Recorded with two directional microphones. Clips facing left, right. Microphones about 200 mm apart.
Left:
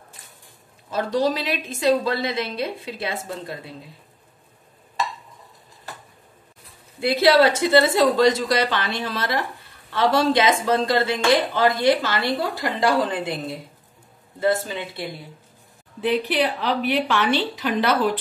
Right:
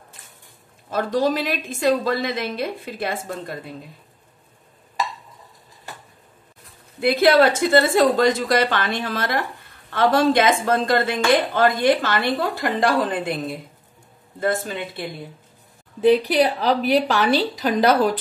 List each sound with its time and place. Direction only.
0.8 s a woman's voice: 50° right (ahead or behind)
7.0 s a woman's voice: 55° right (ahead or behind)
16.0 s a woman's voice: 40° right (ahead or behind)